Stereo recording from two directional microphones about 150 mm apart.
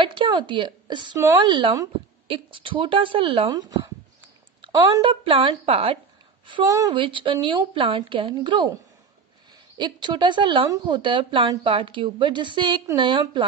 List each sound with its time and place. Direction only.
0.0 s a woman's voice: 35° right (ahead or behind)
5.1 s a woman's voice: 35° right (ahead or behind)
9.8 s a woman's voice: 30° right (ahead or behind)